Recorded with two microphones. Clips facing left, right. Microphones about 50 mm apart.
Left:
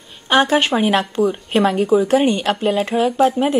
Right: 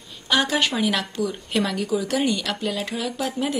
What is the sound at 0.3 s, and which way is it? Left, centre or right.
A woman's voice, left.